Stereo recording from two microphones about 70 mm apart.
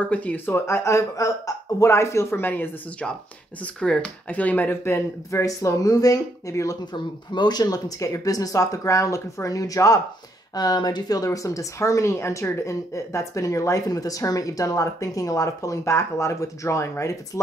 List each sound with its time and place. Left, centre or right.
0.0 s speech: centre
0.7 s speech: left
3.6 s speech: centre
4.8 s speech: left
6.9 s speech: left
10.5 s speech: left